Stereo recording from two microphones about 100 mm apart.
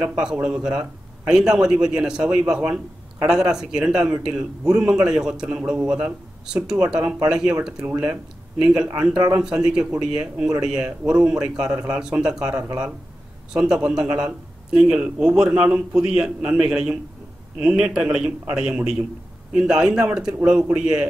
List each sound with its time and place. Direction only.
0.2 s a man's voice: 10° right (ahead or behind)
12.5 s speech: 20° right (ahead or behind)
13.5 s a man's voice: 10° right (ahead or behind)